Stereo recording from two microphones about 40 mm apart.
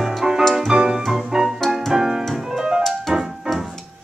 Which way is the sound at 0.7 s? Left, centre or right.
Centre.